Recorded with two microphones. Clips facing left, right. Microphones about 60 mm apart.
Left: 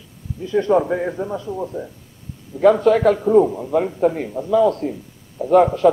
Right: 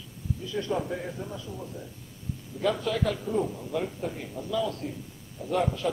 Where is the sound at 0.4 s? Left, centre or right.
Left.